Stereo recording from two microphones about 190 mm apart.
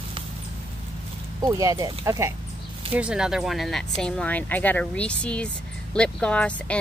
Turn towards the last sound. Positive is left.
turn(degrees=5)  # may be behind; listen again after turning